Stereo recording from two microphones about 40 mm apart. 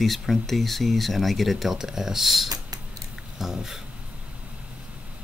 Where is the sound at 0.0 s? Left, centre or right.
Centre.